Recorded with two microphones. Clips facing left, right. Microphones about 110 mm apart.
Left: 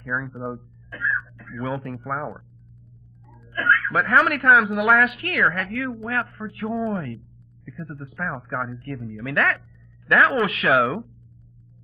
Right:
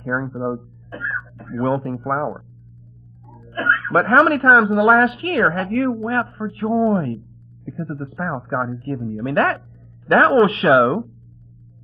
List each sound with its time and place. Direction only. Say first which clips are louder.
0.1 s speech: right 5 dB; 40° right (ahead or behind)
1.4 s a sound: right 8 dB; 30° right (ahead or behind)
1.8 s speech: right 7 dB; 35° right (ahead or behind)
3.4 s speech: right 1 dB; 30° right (ahead or behind)
5.7 s speech: right 9 dB; 45° right (ahead or behind)
6.0 s speech: right 6 dB; 30° right (ahead or behind)